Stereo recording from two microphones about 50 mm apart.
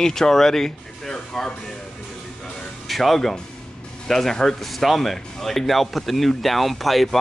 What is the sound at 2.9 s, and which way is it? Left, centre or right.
Speech, centre.